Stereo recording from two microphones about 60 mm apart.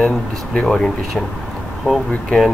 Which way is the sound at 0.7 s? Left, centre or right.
Centre.